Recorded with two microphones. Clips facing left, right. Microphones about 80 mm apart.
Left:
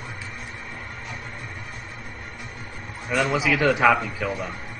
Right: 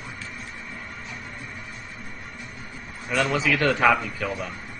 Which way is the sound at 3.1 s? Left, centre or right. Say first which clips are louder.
Left 1 dB; centre.